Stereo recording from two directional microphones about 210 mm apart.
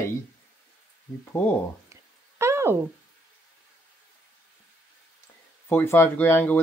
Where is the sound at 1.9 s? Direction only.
15° right (ahead or behind).